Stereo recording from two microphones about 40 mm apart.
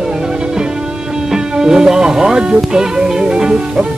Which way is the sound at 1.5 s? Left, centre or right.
Centre.